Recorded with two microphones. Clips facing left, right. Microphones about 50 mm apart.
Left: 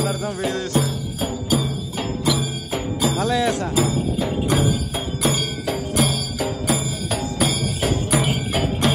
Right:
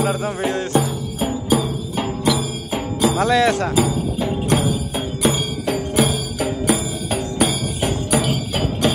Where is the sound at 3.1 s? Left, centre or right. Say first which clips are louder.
Right 5 dB; right.